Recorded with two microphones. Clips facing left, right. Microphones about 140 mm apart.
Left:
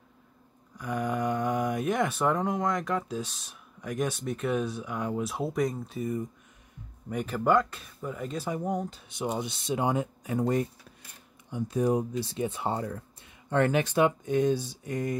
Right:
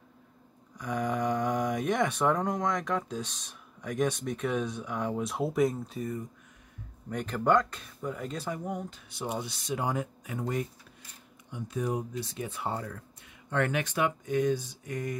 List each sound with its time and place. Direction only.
0.7 s speech: centre (ahead or behind)
7.1 s speech: 5° left (ahead or behind)
9.1 s speech: 15° left (ahead or behind)
10.3 s speech: 35° left (ahead or behind)